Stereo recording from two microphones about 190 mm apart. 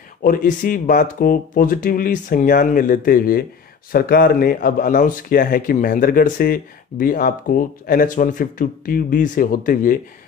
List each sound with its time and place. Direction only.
0.2 s a man's voice: 45° left (ahead or behind)